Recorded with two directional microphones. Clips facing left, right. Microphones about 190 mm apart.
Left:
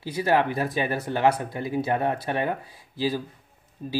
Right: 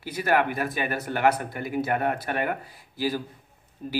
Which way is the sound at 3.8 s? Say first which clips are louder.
Even; 25° left (ahead or behind).